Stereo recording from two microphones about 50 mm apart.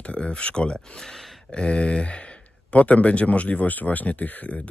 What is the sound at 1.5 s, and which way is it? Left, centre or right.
Speech, left.